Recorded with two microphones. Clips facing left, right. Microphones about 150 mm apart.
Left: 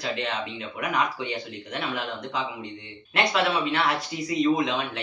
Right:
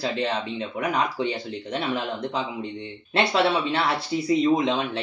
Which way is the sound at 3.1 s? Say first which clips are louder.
Right 2 dB; 30° right (ahead or behind).